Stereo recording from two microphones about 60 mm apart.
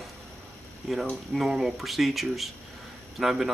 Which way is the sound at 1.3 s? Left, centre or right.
Centre.